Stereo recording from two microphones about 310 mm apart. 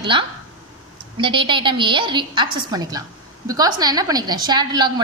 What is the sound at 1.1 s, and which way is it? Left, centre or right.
A woman's voice, centre.